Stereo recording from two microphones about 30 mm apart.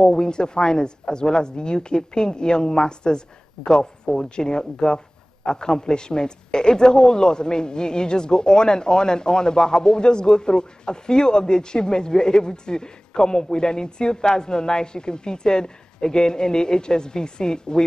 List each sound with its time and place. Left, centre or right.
0.0 s speech: left